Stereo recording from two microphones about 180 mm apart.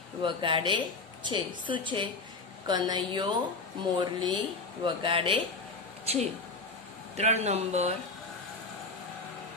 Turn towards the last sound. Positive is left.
turn(degrees=-35)  # may be behind; listen again after turning